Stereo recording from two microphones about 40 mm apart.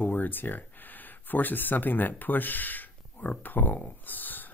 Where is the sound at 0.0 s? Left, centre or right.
Left.